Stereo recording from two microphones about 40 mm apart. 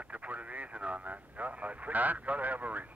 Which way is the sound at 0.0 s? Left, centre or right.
Right.